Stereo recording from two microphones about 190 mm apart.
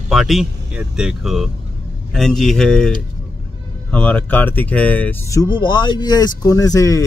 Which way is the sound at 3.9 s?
10° left (ahead or behind).